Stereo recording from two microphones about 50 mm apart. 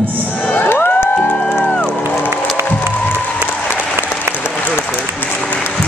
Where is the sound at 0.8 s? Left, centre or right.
Left.